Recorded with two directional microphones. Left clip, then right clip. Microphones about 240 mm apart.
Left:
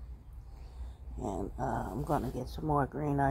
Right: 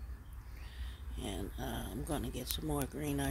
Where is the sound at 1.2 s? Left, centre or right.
Centre.